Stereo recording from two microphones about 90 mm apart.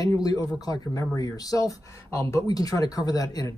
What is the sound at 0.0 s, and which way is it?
Speech, 45° left (ahead or behind).